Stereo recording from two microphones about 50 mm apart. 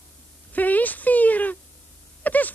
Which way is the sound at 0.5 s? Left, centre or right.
Left.